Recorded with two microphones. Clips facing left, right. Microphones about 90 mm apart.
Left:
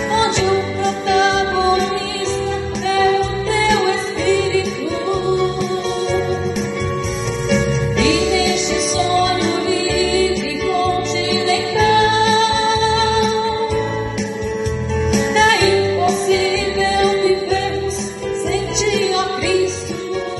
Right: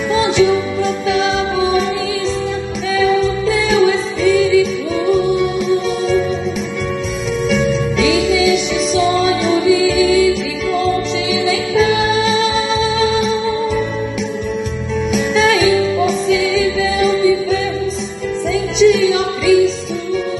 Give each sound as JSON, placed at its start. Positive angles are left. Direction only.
{"t": 0.1, "sound": "music", "side_deg": 40}
{"t": 1.1, "sound": "music", "side_deg": -45}
{"t": 3.4, "sound": "music", "side_deg": 40}
{"t": 7.4, "sound": "music", "side_deg": 40}
{"t": 9.7, "sound": "music", "side_deg": 40}
{"t": 15.0, "sound": "music", "side_deg": 35}
{"t": 18.5, "sound": "music", "side_deg": 40}